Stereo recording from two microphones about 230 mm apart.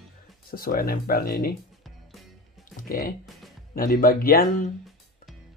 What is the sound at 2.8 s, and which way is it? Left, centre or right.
Speech, left.